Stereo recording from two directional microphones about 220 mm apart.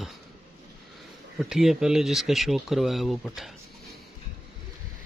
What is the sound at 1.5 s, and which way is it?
Speech, centre (ahead or behind).